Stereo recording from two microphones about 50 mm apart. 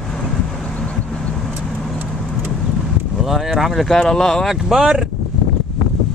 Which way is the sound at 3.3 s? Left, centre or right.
Centre.